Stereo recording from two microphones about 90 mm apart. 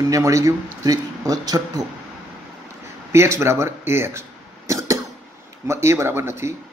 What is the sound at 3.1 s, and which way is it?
Cough, 30° right (ahead or behind).